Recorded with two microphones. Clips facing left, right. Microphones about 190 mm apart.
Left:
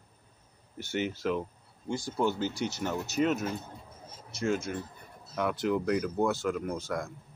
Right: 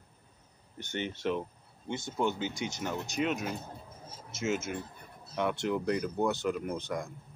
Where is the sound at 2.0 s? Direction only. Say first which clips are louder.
Left 2 dB; 20° right (ahead or behind).